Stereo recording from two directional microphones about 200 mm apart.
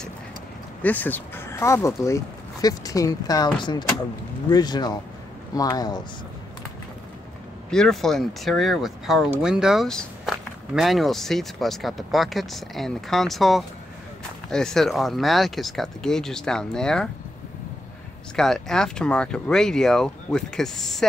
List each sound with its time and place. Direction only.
0.8 s speech: 10° left (ahead or behind)
7.7 s speech: 5° left (ahead or behind)
18.3 s speech: centre (ahead or behind)